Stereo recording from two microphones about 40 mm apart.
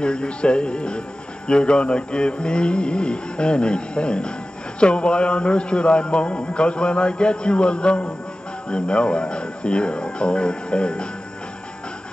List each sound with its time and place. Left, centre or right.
0.0 s speech: left